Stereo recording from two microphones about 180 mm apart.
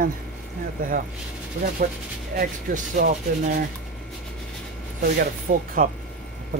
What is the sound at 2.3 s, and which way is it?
Speech, 55° right (ahead or behind).